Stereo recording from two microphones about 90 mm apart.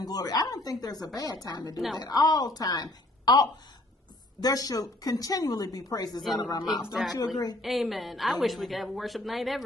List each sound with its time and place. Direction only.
0.0 s a woman's voice: 45° left (ahead or behind)
6.8 s a woman's voice: 5° right (ahead or behind)
7.2 s a woman's voice: 45° left (ahead or behind)
7.6 s a woman's voice: centre (ahead or behind)